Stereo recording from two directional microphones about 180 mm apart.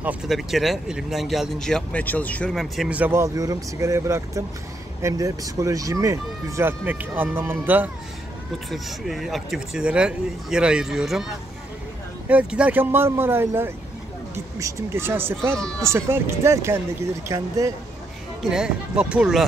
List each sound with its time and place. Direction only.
0.0 s speech: 5° right (ahead or behind)
8.6 s speech: centre (ahead or behind); by 17.7 s 15° right (ahead or behind)
18.5 s speech: 5° right (ahead or behind)